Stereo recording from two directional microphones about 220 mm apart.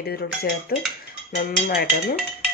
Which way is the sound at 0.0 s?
45° left (ahead or behind).